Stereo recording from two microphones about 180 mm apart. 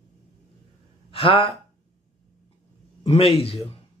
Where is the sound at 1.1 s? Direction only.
30° left (ahead or behind).